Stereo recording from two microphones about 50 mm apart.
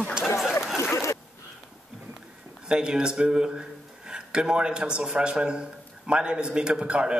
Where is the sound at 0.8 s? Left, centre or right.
Left.